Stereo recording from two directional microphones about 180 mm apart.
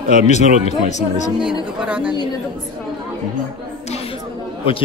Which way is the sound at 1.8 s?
5° right (ahead or behind).